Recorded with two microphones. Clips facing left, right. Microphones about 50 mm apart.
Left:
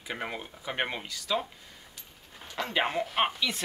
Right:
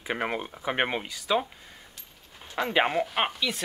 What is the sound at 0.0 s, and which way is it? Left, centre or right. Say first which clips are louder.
Speech: right 6 dB; right.